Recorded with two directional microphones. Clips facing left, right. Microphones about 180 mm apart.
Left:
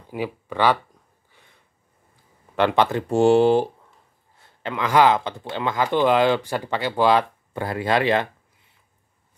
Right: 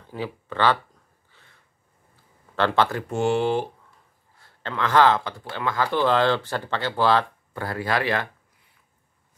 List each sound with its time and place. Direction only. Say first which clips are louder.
0.0 s speech: left 3 dB; 15° left (ahead or behind)
1.3 s a sound: left 2 dB; 15° left (ahead or behind)
2.5 s speech: left 3 dB; 15° left (ahead or behind); by 3.6 s 35° left (ahead or behind)
4.4 s speech: left 1 dB; 15° left (ahead or behind)